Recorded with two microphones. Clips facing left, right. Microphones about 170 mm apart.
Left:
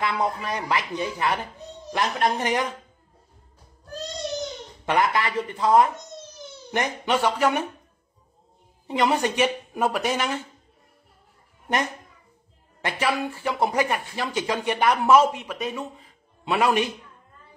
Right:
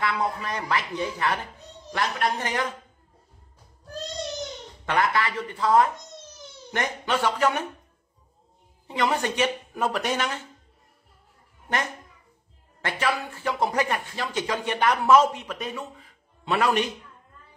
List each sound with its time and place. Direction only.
0.0 s speech: 20° left (ahead or behind)
4.8 s speech: 15° left (ahead or behind)
8.8 s speech: 15° left (ahead or behind)
12.8 s speech: 10° left (ahead or behind)